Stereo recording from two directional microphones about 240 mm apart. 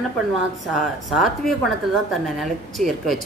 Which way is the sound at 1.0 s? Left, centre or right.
Centre.